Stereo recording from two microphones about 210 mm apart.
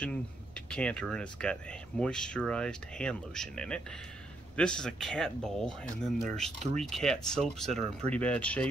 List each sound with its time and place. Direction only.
0.0 s speech: 5° left (ahead or behind)